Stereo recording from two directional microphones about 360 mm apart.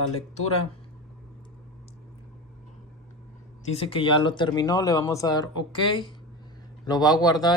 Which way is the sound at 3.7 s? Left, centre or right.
Centre.